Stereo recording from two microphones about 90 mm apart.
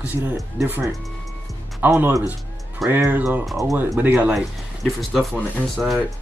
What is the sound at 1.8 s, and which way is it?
Speech, 20° right (ahead or behind).